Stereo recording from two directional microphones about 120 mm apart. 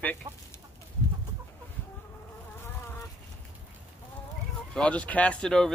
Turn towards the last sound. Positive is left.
turn(degrees=5)  # may be behind; listen again after turning